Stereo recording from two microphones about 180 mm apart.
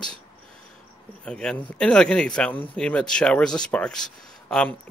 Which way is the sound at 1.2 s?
5° left (ahead or behind).